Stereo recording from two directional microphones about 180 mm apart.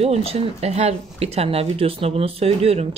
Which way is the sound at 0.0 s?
35° right (ahead or behind).